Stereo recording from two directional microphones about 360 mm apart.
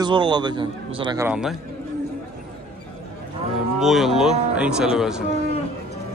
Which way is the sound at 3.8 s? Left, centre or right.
Centre.